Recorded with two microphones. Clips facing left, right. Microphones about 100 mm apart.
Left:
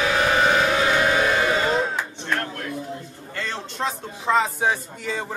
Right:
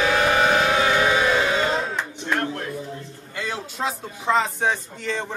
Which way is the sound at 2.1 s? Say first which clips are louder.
Right 2 dB; 20° right (ahead or behind).